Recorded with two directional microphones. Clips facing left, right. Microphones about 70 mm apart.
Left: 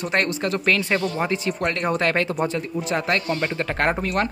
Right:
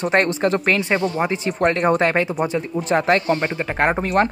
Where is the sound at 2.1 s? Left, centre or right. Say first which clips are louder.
Right 2 dB; centre.